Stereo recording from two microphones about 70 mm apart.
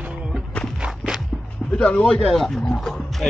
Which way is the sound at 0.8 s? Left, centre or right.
Centre.